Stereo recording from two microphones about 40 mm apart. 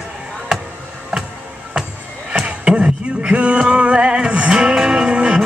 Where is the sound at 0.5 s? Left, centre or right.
Centre.